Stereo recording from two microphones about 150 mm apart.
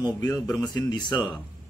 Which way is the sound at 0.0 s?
25° left (ahead or behind).